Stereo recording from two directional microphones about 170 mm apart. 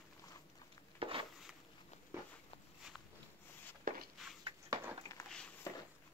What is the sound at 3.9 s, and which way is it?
Walk, 55° right (ahead or behind).